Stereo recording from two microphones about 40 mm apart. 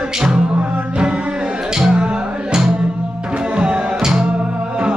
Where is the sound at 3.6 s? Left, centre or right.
Right.